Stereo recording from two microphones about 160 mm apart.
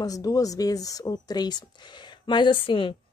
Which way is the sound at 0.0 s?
25° left (ahead or behind).